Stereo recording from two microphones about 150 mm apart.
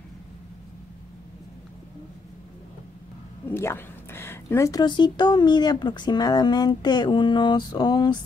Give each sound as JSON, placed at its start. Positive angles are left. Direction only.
{"t": 3.4, "sound": "a woman's voice", "side_deg": 15}